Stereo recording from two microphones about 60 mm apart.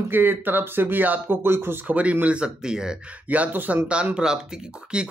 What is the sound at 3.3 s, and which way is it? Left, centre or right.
Speech, right.